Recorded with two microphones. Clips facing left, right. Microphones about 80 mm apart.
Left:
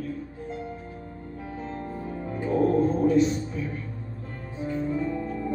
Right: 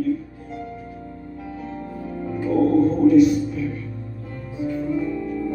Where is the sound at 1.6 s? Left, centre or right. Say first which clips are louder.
Right 1 dB; left.